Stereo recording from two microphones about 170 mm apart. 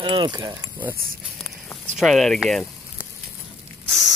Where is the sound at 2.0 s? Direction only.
Centre (ahead or behind).